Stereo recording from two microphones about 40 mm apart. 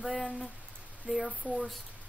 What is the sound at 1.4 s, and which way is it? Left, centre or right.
Speech, right.